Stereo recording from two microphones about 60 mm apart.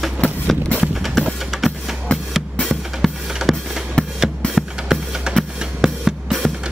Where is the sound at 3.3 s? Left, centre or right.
Centre.